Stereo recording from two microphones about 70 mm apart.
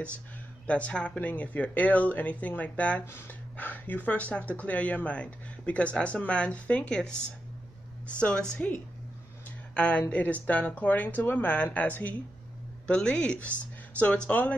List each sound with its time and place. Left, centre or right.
0.7 s speech: centre
3.1 s speech: left; by 7.2 s centre
8.2 s speech: centre